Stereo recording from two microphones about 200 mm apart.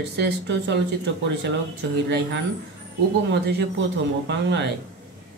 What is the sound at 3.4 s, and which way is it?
Speech, 55° right (ahead or behind).